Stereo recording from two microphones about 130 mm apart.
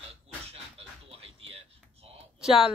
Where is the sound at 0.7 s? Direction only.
50° right (ahead or behind).